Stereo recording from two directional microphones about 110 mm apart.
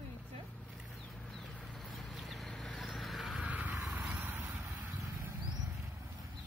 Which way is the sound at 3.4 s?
15° right (ahead or behind).